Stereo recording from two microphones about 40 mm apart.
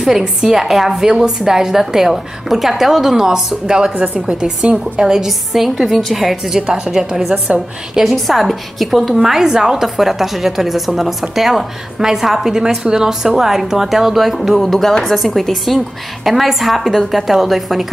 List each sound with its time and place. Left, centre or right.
0.2 s a woman's voice: centre
0.6 s a woman's voice: centre
6.1 s a woman's voice: centre
8.1 s a woman's voice: centre